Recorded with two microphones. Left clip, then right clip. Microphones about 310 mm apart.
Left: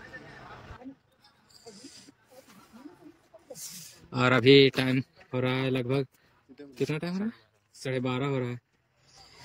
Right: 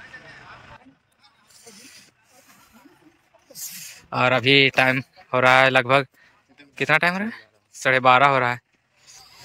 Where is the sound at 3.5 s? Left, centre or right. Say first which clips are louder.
Right 6 dB; centre.